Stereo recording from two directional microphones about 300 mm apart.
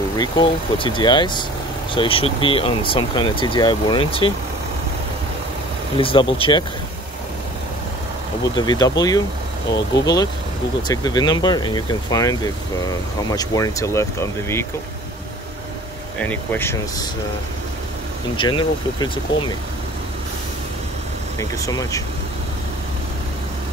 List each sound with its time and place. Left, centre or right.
0.2 s speech: centre
5.9 s speech: centre
8.5 s speech: centre
16.2 s speech: centre
18.3 s speech: centre
21.4 s speech: centre